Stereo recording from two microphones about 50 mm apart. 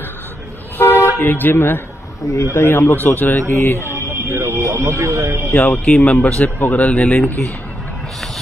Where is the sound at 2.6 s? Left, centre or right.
Left.